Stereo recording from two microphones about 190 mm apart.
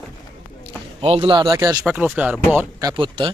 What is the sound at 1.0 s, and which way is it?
Speech, 30° right (ahead or behind).